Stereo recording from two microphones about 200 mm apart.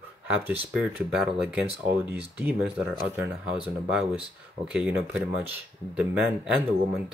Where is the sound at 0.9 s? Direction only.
5° right (ahead or behind).